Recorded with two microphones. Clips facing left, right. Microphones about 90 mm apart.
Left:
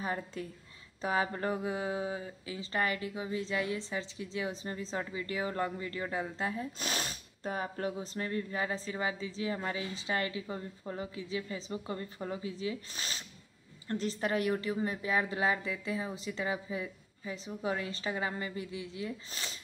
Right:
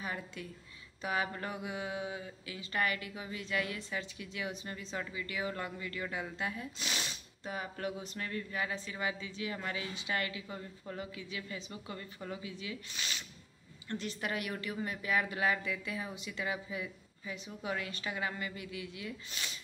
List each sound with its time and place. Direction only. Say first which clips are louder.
0.0 s speech: left 5 dB; 35° left (ahead or behind)